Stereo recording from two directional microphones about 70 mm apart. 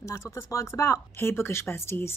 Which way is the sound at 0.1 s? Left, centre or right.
Left.